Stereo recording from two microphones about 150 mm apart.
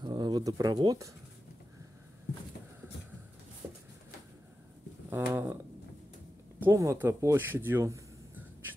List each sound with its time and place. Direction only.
0.0 s pigeon: 30° right (ahead or behind)
5.1 s a sound: 15° right (ahead or behind)
6.6 s speech: 20° right (ahead or behind)